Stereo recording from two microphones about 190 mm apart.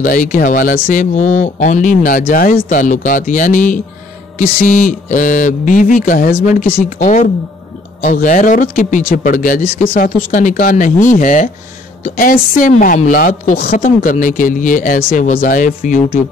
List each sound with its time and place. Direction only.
0.0 s a woman's voice: 45° left (ahead or behind)